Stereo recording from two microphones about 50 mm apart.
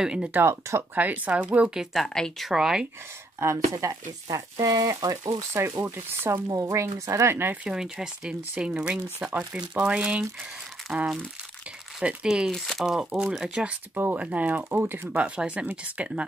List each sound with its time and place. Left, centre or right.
0.0 s speech: centre
0.4 s speech: right
0.9 s speech: right
2.0 s speech: centre
2.5 s speech: centre
3.3 s speech: right
4.6 s speech: right
7.6 s speech: centre
12.4 s speech: centre
12.8 s speech: centre
14.1 s speech: right
14.7 s speech: right
15.1 s speech: right